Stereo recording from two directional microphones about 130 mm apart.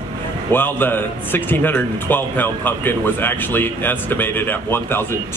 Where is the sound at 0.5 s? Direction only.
15° left (ahead or behind).